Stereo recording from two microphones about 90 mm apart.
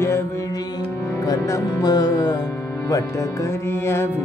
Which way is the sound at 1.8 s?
50° left (ahead or behind).